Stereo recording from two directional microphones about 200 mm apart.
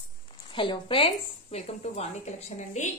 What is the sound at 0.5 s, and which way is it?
Speech, 25° left (ahead or behind).